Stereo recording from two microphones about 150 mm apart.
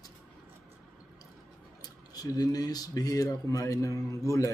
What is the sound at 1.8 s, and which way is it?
Speech, 25° left (ahead or behind).